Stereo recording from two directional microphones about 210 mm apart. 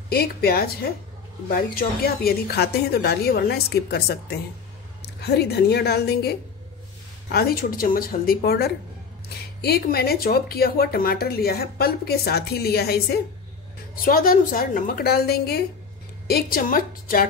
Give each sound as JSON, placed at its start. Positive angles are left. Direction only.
{"t": 0.1, "sound": "speech", "side_deg": 45}